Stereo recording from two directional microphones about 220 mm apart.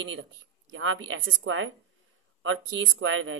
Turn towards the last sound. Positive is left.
turn(degrees=-60)  # may be behind; listen again after turning